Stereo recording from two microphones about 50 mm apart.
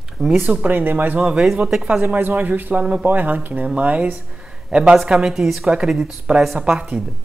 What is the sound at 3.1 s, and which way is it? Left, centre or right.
Speech, right.